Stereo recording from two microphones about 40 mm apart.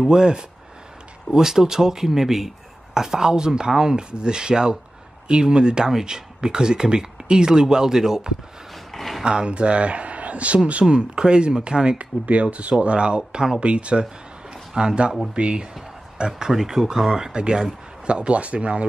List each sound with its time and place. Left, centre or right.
0.0 s speech: centre
8.9 s a sound: centre
9.2 s speech: right
12.3 s speech: right
13.6 s speech: right
14.5 s a sound: centre
15.3 s speech: right
16.3 s speech: centre; by 18.9 s right